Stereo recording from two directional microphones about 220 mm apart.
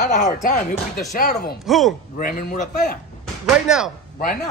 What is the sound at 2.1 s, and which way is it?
Speech, 40° left (ahead or behind).